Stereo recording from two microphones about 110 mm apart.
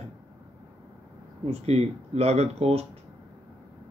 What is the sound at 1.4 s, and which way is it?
A man's voice, 70° right (ahead or behind).